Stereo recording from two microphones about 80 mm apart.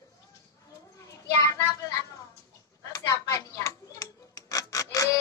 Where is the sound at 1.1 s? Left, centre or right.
Left.